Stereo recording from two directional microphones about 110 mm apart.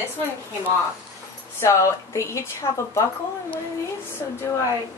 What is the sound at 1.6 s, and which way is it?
Speech, 25° left (ahead or behind).